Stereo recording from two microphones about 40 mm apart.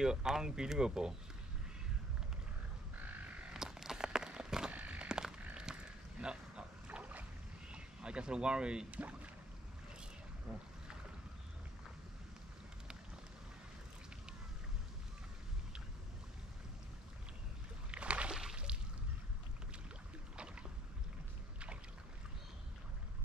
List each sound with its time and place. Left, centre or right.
0.0 s speech: centre
3.0 s frog: right
3.5 s a sound: centre
4.6 s crow: right
5.0 s a sound: right
7.0 s boat: right
7.7 s speech: right
8.9 s speech: right
10.5 s boat: centre
17.9 s boat: right
18.3 s a sound: centre